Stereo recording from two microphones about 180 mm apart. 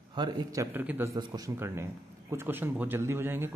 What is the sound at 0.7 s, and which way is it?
Speech, 10° right (ahead or behind).